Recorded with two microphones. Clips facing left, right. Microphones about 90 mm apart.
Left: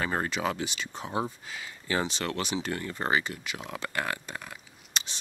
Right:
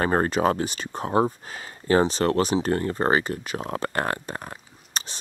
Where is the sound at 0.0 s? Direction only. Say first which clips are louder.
Right 8 dB; 40° right (ahead or behind).